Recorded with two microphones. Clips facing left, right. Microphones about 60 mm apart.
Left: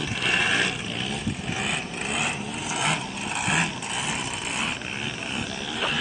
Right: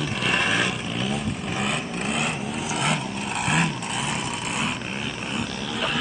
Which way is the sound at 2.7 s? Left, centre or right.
Centre.